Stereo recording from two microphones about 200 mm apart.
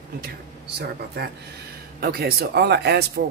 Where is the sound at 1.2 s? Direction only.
55° right (ahead or behind).